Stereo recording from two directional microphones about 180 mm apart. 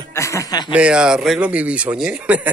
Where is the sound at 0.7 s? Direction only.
5° right (ahead or behind).